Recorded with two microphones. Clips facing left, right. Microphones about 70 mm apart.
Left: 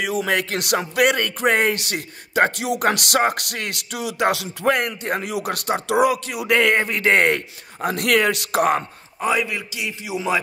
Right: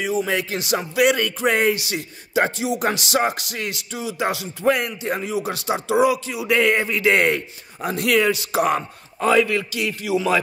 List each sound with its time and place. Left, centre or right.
0.0 s music: left
4.6 s music: left
8.5 s speech: left
9.2 s a man's voice: centre